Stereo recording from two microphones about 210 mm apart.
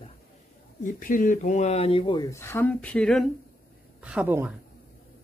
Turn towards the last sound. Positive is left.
turn(degrees=-10)  # may be behind; listen again after turning